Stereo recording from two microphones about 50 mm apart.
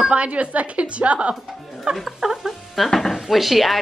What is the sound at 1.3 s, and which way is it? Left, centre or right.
Music, centre.